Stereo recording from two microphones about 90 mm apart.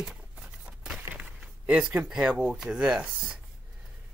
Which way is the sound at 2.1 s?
10° right (ahead or behind).